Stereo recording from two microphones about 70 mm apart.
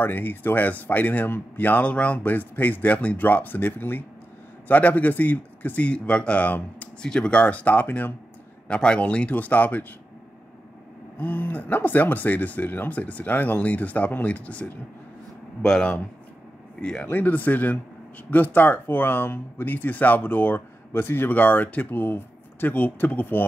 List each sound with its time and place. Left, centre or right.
0.0 s speech: left
8.6 s speech: centre
11.1 s speech: left
15.6 s speech: centre
16.8 s speech: centre